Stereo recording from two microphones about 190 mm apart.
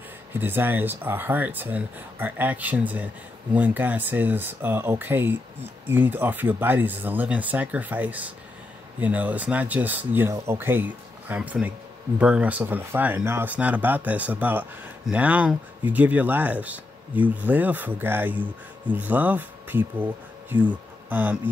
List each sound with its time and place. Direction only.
0.3 s speech: 10° right (ahead or behind)